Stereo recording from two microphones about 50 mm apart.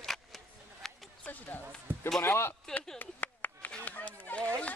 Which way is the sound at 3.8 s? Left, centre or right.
Left.